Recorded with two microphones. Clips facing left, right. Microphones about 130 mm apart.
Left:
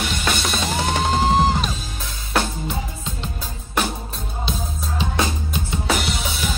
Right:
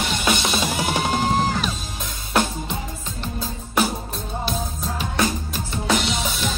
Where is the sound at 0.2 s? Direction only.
5° right (ahead or behind).